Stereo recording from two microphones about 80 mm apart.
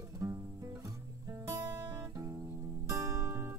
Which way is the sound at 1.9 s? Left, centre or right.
Right.